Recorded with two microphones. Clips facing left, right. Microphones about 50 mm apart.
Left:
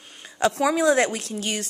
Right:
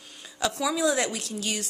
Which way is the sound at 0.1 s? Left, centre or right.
Left.